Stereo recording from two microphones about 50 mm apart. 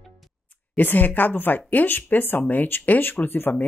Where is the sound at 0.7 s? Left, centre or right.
Left.